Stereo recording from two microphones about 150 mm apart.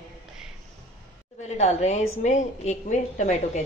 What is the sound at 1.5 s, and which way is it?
A woman's voice, 50° left (ahead or behind).